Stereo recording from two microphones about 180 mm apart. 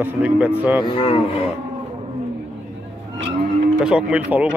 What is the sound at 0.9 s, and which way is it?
Speech, 30° left (ahead or behind).